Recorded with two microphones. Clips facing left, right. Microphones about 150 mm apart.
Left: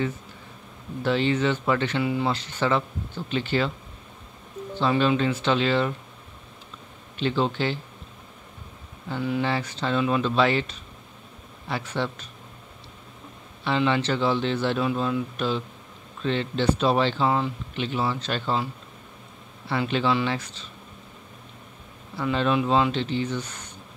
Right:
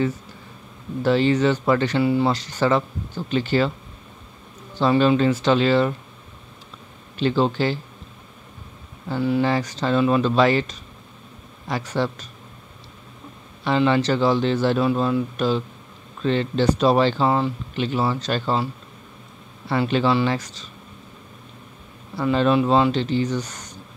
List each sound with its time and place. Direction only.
1.0 s speech: 40° right (ahead or behind)
4.7 s speech: 40° right (ahead or behind)
7.2 s speech: 40° right (ahead or behind)
9.1 s speech: 35° right (ahead or behind)
13.7 s speech: 40° right (ahead or behind)
19.7 s speech: 40° right (ahead or behind)
22.1 s speech: 40° right (ahead or behind)